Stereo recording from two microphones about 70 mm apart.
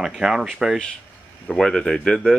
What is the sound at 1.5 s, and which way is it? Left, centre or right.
Speech, centre.